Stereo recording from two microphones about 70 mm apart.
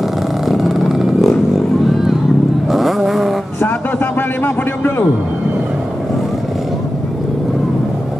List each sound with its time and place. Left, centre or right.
0.5 s vehicle: centre
2.7 s vehicle: centre
3.6 s a sound: left